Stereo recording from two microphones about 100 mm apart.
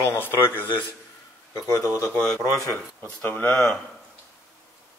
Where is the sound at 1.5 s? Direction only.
35° left (ahead or behind).